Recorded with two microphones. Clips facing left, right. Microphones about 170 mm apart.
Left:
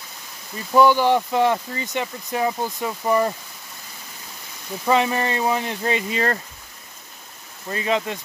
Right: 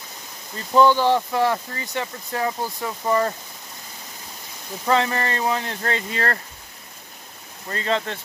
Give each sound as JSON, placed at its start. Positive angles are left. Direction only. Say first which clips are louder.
{"t": 0.6, "sound": "speech", "louder": "left 1 dB", "side_deg": 10}
{"t": 4.8, "sound": "speech", "louder": "left 1 dB", "side_deg": 15}
{"t": 7.7, "sound": "speech", "louder": "left 1 dB", "side_deg": 15}